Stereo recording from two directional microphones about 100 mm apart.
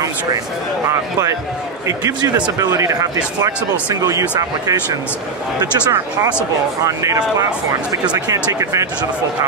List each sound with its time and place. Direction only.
1.9 s speech: 35° right (ahead or behind)